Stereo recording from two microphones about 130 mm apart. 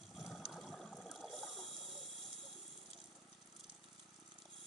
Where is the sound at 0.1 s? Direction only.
Centre (ahead or behind).